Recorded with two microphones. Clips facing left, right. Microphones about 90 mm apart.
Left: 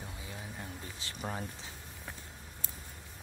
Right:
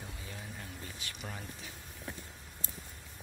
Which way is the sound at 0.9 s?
30° left (ahead or behind).